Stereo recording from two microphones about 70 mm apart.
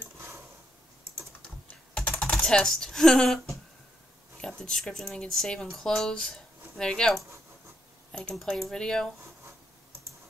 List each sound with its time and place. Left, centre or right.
2.0 s typing: centre
2.4 s speech: centre